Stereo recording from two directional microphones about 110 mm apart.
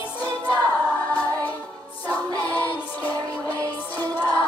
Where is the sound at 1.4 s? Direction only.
15° left (ahead or behind).